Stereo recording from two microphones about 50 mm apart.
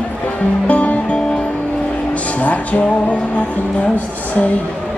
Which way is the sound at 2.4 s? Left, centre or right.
Left.